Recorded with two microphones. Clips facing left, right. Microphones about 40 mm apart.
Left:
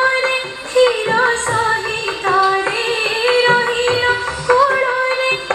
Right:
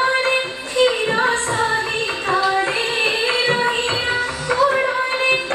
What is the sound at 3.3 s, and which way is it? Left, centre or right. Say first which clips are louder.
Music: left 5 dB; left.